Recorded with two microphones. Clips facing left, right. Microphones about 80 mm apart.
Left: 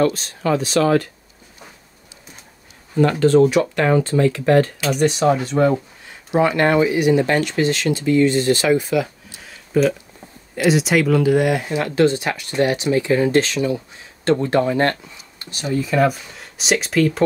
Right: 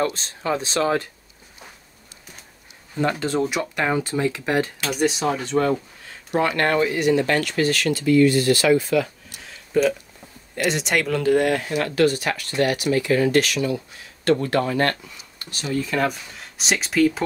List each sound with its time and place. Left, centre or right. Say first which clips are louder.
0.0 s speech: left 6 dB; right
3.0 s speech: left 9 dB; centre
4.8 s speech: left 5 dB; centre
6.3 s speech: left 4 dB; centre
9.7 s speech: left 2 dB; centre
11.7 s speech: left 3 dB; left
15.8 s speech: left 6 dB; centre